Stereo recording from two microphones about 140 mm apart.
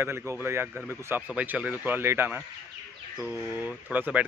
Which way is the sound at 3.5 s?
15° right (ahead or behind).